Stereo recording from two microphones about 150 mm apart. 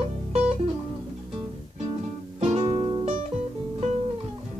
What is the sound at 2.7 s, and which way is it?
Music, 30° right (ahead or behind).